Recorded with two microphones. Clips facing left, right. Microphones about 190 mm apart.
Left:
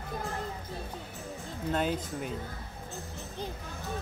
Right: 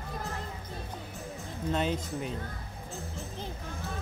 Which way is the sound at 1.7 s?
5° left (ahead or behind).